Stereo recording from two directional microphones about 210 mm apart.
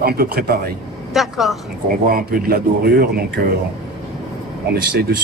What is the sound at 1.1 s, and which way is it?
Speech, centre (ahead or behind).